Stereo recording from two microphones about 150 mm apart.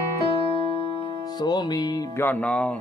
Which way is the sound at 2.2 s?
10° left (ahead or behind).